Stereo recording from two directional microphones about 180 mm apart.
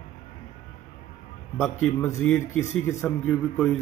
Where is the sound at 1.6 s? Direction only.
5° left (ahead or behind).